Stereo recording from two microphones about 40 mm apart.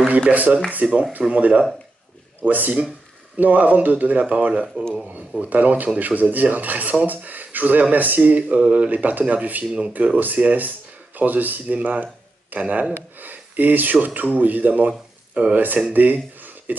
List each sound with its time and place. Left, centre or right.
0.3 s speech: right
0.8 s speech: right
1.3 s speech: right
11.6 s speech: right
14.9 s a sound: right
15.5 s speech: right
15.9 s a sound: right